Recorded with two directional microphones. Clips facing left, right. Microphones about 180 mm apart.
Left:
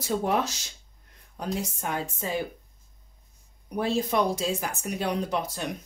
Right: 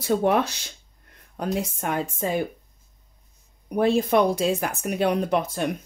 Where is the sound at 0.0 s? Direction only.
60° right (ahead or behind).